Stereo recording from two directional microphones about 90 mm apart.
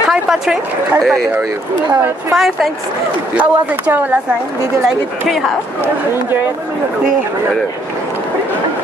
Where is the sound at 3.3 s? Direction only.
20° right (ahead or behind).